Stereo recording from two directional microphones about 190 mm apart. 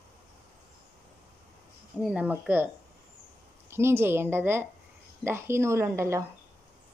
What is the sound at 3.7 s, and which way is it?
A woman's voice, 15° right (ahead or behind).